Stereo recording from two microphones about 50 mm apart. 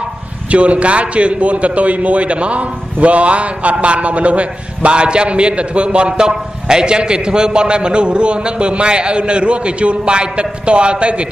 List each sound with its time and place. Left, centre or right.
0.5 s a man's voice: right